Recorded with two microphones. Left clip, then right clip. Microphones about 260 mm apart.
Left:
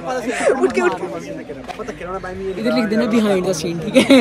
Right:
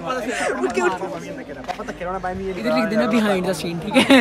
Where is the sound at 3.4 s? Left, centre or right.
Centre.